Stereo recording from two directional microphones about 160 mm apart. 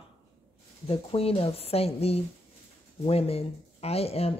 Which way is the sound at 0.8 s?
35° left (ahead or behind).